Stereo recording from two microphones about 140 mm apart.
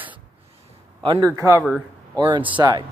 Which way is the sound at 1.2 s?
20° right (ahead or behind).